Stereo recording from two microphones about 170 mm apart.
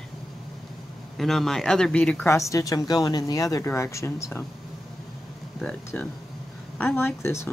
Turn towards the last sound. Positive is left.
turn(degrees=15)  # may be behind; listen again after turning